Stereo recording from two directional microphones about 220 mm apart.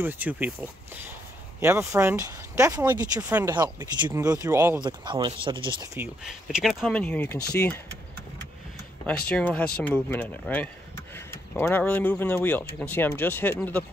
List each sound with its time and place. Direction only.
0.0 s speech: 10° right (ahead or behind)
1.6 s speech: 10° right (ahead or behind)
5.9 s speech: 5° right (ahead or behind)
9.3 s speech: 5° left (ahead or behind)